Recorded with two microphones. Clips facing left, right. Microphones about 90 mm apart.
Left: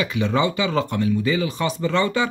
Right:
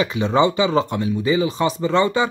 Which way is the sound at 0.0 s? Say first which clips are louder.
Right 4 dB; 25° right (ahead or behind).